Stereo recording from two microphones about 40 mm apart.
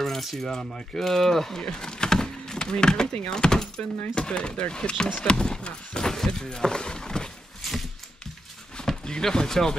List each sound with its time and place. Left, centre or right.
0.0 s coin: centre
0.5 s speech: centre
1.6 s speech: centre
7.6 s a sound: centre
8.8 s speech: centre